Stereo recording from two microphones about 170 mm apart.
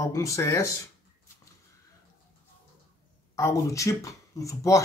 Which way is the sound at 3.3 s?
20° left (ahead or behind).